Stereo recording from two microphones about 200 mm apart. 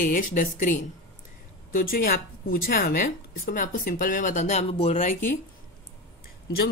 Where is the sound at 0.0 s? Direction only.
40° left (ahead or behind).